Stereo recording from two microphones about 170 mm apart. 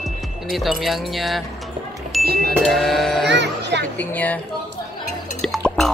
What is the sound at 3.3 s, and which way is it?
Speech, 90° right.